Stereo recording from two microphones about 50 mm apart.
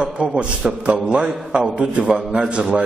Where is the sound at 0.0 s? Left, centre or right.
Centre.